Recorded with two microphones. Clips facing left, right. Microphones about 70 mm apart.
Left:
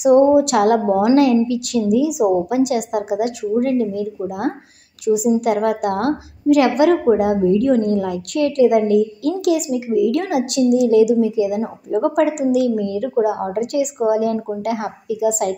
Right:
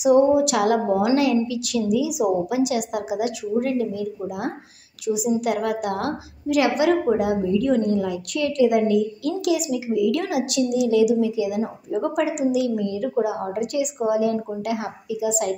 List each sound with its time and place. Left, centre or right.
0.0 s a woman's voice: left